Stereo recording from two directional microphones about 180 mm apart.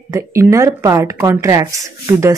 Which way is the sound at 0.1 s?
15° right (ahead or behind).